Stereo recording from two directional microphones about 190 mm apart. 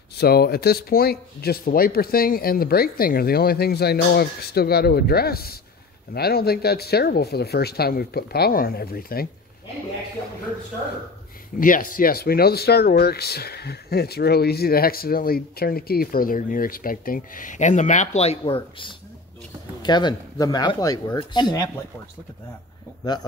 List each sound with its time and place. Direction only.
0.2 s speech: 55° left (ahead or behind)
11.6 s speech: 45° left (ahead or behind); by 21.6 s 20° left (ahead or behind)